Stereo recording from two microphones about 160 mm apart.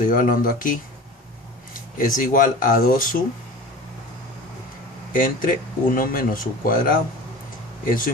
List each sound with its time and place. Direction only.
0.0 s speech: 60° left (ahead or behind)
2.0 s speech: 60° left (ahead or behind)
5.1 s speech: 60° left (ahead or behind)